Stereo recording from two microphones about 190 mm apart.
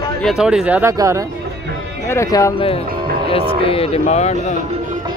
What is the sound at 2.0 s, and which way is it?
Speech, 15° left (ahead or behind).